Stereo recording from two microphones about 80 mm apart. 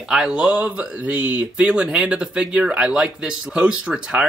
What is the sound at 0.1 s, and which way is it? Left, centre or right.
Speech, centre.